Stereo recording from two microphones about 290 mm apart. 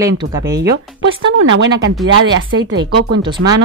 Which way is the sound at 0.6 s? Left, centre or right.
Right.